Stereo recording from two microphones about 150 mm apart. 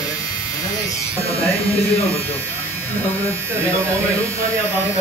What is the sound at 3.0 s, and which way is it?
Speech, 15° left (ahead or behind).